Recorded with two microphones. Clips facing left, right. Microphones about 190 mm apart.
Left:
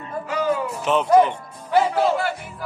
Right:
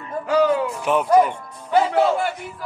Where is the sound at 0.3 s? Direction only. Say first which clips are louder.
Right 5 dB; 75° right (ahead or behind).